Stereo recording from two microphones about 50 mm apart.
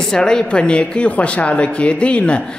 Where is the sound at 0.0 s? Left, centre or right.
Centre.